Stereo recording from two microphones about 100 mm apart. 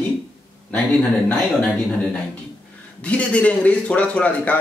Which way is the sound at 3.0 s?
15° left (ahead or behind).